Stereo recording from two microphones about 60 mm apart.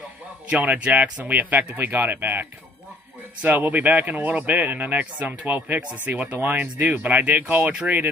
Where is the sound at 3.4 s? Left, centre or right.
Right.